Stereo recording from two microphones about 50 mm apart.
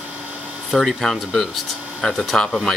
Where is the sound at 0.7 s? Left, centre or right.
Centre.